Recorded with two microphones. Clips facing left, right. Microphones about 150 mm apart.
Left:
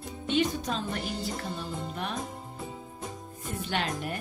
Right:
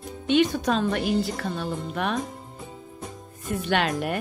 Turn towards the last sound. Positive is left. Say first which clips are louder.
# right 7 dB
turn(degrees=-75)  # may be behind; listen again after turning